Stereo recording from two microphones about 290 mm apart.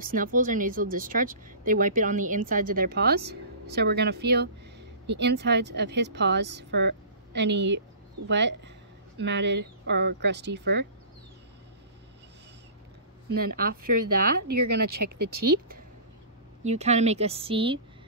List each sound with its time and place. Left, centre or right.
0.1 s speech: right
13.6 s speech: right
15.0 s speech: right
16.6 s speech: right